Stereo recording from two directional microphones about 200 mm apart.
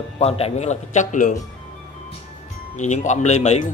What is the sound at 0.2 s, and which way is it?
Speech, 30° left (ahead or behind).